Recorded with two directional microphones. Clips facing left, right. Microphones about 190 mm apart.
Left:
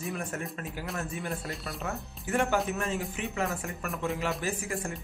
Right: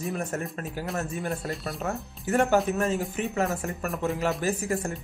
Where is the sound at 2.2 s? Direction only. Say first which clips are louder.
Right 5 dB; 40° right (ahead or behind).